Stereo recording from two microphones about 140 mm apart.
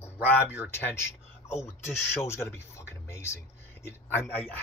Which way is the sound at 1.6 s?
20° left (ahead or behind).